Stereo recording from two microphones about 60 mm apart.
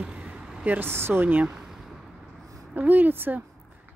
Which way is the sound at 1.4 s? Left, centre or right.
Centre.